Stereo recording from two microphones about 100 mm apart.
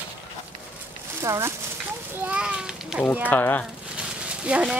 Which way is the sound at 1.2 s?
30° right (ahead or behind).